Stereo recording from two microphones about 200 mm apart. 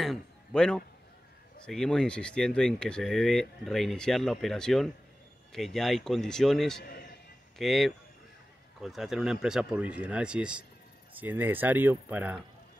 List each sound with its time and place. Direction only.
0.0 s a man's voice: centre (ahead or behind)
6.8 s a sound: 50° left (ahead or behind)
7.5 s speech: centre (ahead or behind)